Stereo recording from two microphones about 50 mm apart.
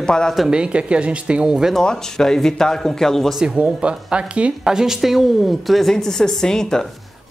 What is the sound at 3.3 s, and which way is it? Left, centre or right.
A woman's voice, centre.